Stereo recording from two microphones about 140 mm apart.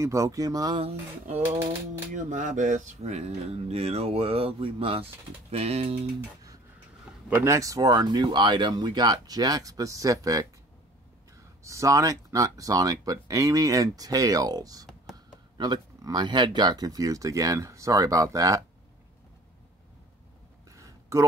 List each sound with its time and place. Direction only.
0.0 s speech: 20° right (ahead or behind)
2.1 s speech: 65° right (ahead or behind)
7.2 s speech: 15° right (ahead or behind)
11.6 s speech: 20° right (ahead or behind)
20.7 s a sound: 20° right (ahead or behind)